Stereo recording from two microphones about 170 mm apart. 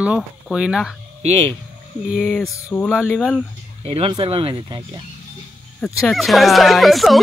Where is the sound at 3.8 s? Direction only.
35° right (ahead or behind).